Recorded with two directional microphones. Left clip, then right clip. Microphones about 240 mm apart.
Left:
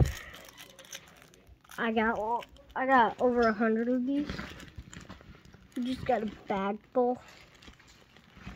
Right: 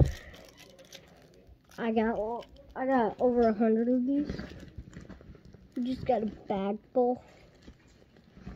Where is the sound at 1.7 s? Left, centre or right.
Left.